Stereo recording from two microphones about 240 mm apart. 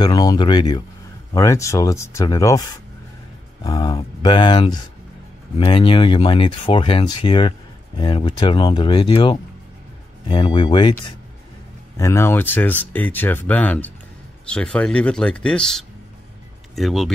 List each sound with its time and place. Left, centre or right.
0.0 s speech: centre
3.6 s speech: centre